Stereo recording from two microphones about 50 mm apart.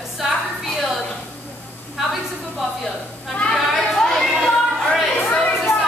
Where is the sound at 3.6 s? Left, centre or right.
Centre.